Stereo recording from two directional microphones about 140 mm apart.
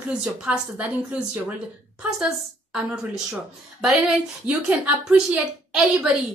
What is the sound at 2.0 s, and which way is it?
A woman's voice, 5° right (ahead or behind).